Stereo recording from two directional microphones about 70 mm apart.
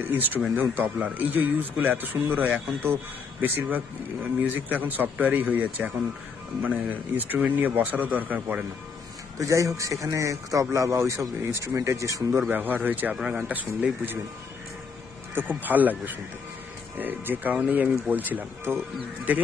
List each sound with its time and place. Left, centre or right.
0.6 s speech: right
9.4 s speech: right
12.4 s speech: right
13.1 s speech: centre
13.4 s speech: right
15.3 s speech: right